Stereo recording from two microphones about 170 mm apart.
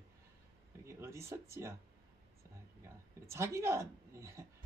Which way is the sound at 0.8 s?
15° right (ahead or behind).